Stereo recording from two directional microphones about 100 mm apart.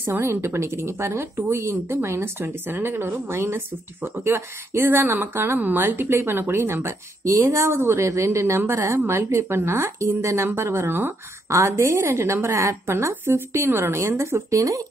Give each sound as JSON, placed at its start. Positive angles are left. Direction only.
{"t": 0.0, "sound": "a woman's voice", "side_deg": -25}